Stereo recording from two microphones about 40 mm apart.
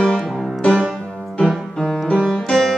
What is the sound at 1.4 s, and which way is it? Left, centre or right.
Music, centre.